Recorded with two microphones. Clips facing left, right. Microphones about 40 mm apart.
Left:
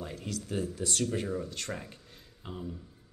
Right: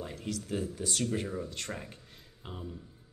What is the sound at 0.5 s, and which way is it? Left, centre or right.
Speech, left.